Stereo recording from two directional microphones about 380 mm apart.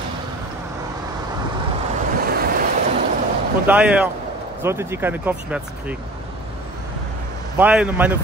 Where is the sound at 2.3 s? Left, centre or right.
Right.